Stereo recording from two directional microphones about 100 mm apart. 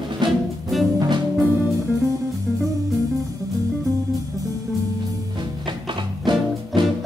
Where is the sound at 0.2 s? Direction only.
50° right (ahead or behind).